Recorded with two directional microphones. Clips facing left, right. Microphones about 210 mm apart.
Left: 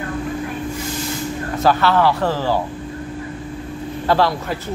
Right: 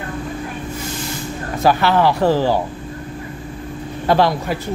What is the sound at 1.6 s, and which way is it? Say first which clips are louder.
Speech: right 1 dB; 15° right (ahead or behind).